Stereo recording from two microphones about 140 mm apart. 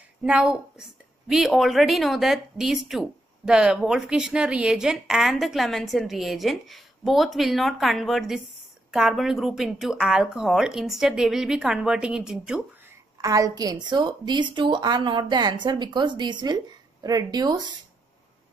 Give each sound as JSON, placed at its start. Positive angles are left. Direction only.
{"t": 0.2, "sound": "a woman's voice", "side_deg": -5}
{"t": 13.2, "sound": "a woman's voice", "side_deg": -25}